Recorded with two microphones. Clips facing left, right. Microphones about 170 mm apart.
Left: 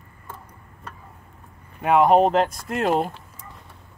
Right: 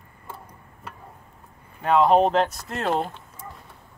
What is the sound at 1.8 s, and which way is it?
Speech, 10° left (ahead or behind).